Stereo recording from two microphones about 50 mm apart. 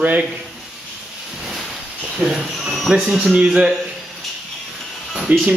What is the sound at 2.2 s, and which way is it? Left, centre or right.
Speech, centre.